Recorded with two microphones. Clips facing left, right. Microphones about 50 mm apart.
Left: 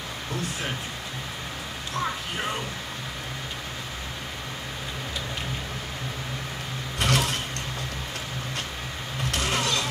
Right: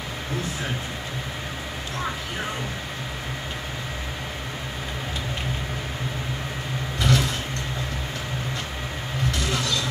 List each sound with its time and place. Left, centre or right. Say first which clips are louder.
7.0 s vehicle: right 1 dB; left
9.3 s vehicle: left 2 dB; left